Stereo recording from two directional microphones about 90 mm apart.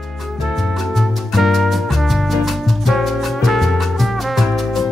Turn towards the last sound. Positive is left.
turn(degrees=0)  # may be behind; listen again after turning